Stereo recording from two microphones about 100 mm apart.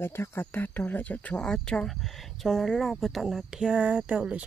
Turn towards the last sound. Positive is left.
turn(degrees=-10)  # may be behind; listen again after turning